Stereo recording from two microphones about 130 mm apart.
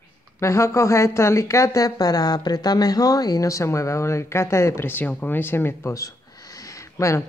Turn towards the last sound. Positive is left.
turn(degrees=20)  # may be behind; listen again after turning